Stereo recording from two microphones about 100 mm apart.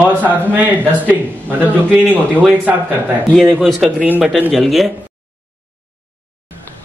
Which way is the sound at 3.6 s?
Centre (ahead or behind).